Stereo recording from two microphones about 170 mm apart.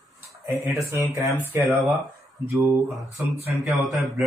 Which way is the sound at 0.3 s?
20° right (ahead or behind).